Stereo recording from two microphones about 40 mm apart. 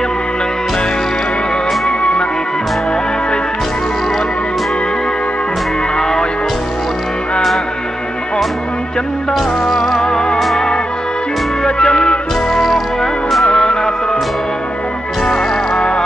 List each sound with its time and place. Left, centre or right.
1.9 s music: left
9.8 s music: centre
11.6 s music: centre
12.6 s music: centre
13.5 s music: centre
15.2 s music: centre